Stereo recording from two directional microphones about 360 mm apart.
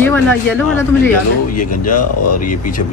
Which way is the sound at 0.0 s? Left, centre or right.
Centre.